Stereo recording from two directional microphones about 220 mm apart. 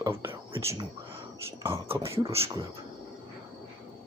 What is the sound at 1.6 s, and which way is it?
Speech, 25° right (ahead or behind).